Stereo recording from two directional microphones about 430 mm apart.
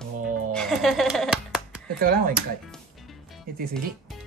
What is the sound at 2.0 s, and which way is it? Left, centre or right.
Speech, centre.